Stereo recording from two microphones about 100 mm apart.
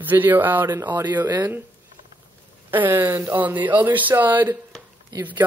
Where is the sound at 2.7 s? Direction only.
20° right (ahead or behind).